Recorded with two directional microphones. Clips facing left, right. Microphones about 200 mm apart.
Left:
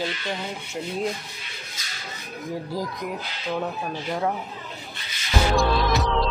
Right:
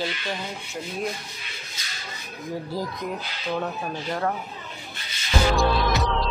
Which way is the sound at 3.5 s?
5° left (ahead or behind).